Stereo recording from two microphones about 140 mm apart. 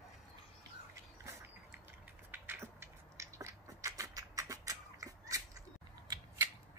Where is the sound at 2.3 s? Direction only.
15° right (ahead or behind).